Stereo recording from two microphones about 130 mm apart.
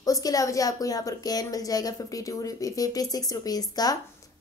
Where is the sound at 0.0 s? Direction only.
25° left (ahead or behind).